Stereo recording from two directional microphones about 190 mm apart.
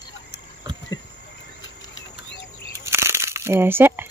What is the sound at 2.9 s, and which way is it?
Crumpling, 15° right (ahead or behind).